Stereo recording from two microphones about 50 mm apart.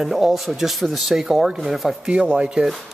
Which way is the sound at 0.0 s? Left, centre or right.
Centre.